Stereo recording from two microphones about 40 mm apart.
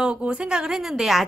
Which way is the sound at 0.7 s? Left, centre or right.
Centre.